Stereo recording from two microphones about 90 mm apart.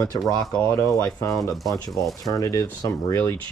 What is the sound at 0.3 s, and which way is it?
Speech, 40° left (ahead or behind).